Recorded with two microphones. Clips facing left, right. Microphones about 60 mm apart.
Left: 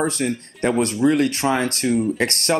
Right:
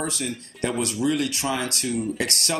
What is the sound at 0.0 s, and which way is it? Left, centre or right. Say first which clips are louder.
Speech: left 7 dB; left.